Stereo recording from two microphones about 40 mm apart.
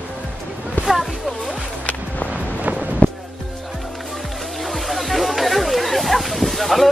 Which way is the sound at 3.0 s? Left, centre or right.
Left.